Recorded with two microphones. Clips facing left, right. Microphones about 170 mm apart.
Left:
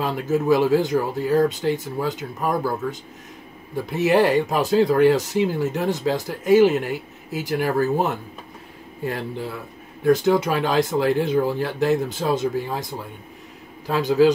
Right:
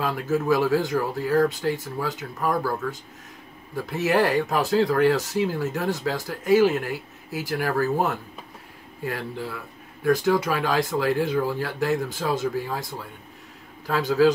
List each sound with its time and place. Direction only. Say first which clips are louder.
0.0 s speech: left 3 dB; 20° left (ahead or behind)